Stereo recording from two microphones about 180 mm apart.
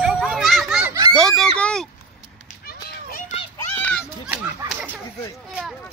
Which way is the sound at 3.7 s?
5° left (ahead or behind).